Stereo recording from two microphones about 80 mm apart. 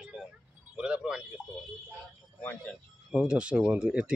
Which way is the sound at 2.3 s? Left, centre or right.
Centre.